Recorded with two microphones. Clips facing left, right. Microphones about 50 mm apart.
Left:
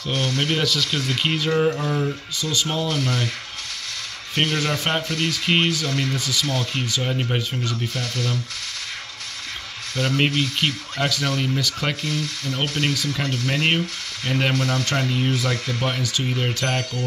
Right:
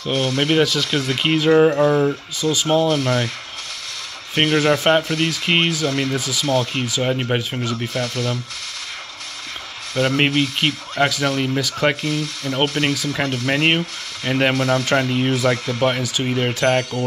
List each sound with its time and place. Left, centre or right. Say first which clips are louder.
0.1 s speech: right 5 dB; right
1.5 s speech: right 9 dB; right
1.9 s speech: right 7 dB; right
2.5 s speech: right 7 dB; right
4.4 s speech: right 6 dB; right
6.8 s speech: right 4 dB; right
9.9 s speech: right 4 dB; right